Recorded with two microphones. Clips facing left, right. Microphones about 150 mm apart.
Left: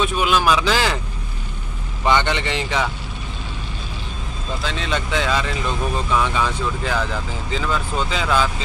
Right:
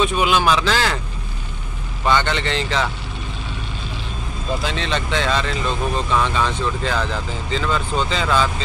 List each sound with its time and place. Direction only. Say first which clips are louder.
0.0 s a man's voice: right 1 dB; centre (ahead or behind)
2.0 s speech: even; 15° left (ahead or behind)
4.7 s speech: right 1 dB; 5° left (ahead or behind)